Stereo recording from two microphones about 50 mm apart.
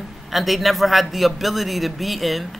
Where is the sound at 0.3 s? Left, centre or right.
Centre.